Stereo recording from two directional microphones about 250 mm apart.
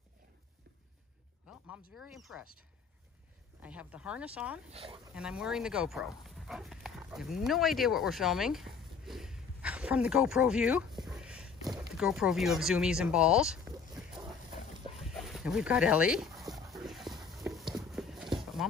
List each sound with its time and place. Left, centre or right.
2.0 s speech: centre
3.6 s speech: centre
4.6 s speech: right
5.1 s speech: centre
11.1 s a sound: centre
12.0 s speech: centre
15.0 s dog: centre
17.7 s clip-clop: centre